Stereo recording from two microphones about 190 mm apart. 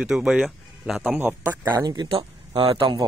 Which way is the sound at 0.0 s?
Centre (ahead or behind).